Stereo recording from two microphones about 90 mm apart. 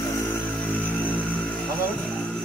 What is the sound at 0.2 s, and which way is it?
Music, 20° left (ahead or behind).